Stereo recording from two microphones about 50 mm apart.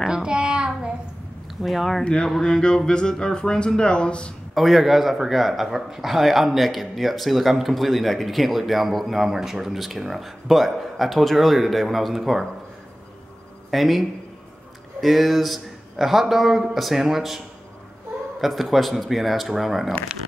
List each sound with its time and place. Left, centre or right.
0.0 s a sound: centre
1.6 s a man's voice: centre
2.0 s speech: centre
4.6 s a man's voice: centre
13.7 s a man's voice: centre
18.4 s a man's voice: centre